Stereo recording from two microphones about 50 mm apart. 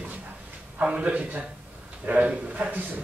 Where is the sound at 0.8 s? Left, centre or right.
Right.